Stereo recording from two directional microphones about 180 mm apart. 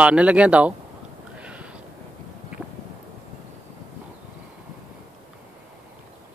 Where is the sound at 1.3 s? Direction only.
5° right (ahead or behind).